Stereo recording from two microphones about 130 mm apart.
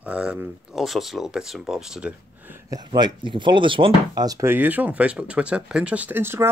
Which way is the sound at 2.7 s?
35° right (ahead or behind).